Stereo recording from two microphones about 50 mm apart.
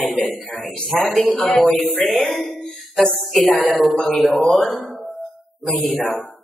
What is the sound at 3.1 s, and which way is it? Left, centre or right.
A woman's voice, centre.